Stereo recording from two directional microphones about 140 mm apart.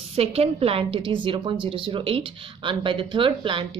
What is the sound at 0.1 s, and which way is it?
A woman's voice, 45° right (ahead or behind).